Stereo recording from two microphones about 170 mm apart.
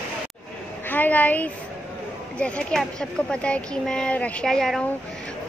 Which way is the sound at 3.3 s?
5° left (ahead or behind).